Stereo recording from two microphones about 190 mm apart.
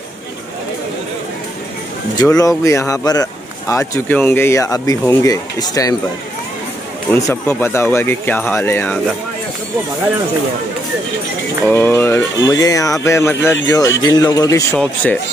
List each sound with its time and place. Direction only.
2.1 s a man's voice: 20° left (ahead or behind)
7.1 s a man's voice: 15° left (ahead or behind)
11.6 s a man's voice: 10° left (ahead or behind)